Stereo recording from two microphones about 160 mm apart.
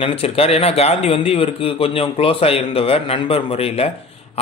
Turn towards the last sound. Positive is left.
turn(degrees=40)  # may be behind; listen again after turning